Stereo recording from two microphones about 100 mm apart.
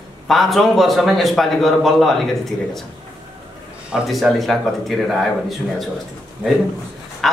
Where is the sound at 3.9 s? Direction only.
5° right (ahead or behind).